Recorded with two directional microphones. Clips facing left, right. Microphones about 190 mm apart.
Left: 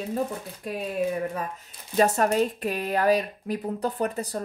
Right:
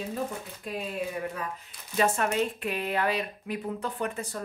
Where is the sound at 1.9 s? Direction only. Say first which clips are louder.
Left 5 dB; 40° left (ahead or behind).